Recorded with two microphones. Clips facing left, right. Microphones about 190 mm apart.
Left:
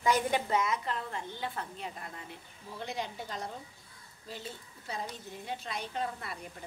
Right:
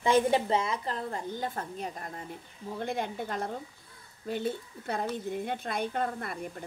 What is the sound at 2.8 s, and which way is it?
A woman's voice, 55° right (ahead or behind).